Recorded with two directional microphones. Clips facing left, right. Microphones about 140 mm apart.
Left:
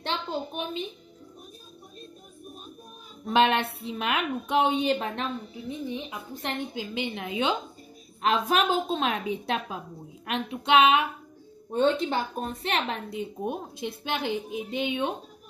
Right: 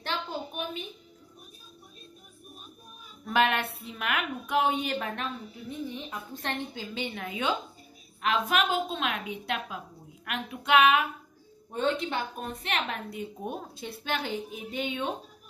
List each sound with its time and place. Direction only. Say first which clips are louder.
0.0 s a woman's voice: left 3 dB; 25° left (ahead or behind)
3.3 s a woman's voice: left 3 dB; 25° left (ahead or behind)
5.7 s a woman's voice: left 3 dB; 15° left (ahead or behind)
8.2 s a woman's voice: left 3 dB; 30° left (ahead or behind)
13.4 s a woman's voice: left 5 dB; 20° left (ahead or behind)